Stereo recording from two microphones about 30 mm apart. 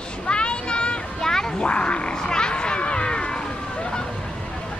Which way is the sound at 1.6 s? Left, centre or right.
Left.